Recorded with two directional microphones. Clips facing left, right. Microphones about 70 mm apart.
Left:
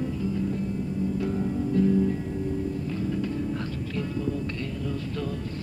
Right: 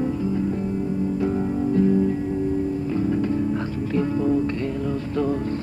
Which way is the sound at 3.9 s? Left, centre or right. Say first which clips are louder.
Right 10 dB; right.